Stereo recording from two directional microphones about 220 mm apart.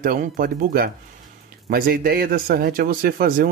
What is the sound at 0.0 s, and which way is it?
A man's voice, 40° right (ahead or behind).